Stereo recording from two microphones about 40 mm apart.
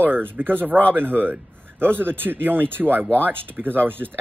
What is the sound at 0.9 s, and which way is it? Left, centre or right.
Speech, right.